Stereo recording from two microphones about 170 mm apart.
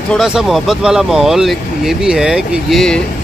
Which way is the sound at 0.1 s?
Centre (ahead or behind).